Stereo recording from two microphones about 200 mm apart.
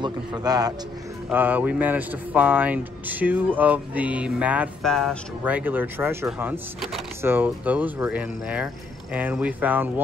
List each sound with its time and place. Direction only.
0.0 s a man's voice: 20° right (ahead or behind)
1.3 s speech: 10° right (ahead or behind)